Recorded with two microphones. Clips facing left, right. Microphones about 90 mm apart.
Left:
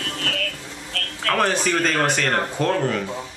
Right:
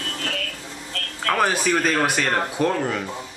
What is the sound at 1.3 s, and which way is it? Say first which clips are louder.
Speech: even; 5° right (ahead or behind).